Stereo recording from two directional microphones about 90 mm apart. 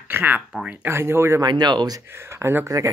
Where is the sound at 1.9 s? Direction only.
30° right (ahead or behind).